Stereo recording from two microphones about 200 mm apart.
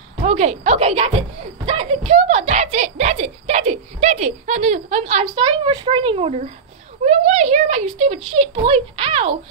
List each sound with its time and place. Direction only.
0.2 s speech: 35° right (ahead or behind)
1.7 s a sound: 30° right (ahead or behind)
5.3 s speech: 25° right (ahead or behind)